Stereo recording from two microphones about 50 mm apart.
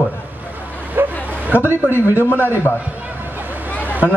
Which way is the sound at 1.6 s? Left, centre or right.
Right.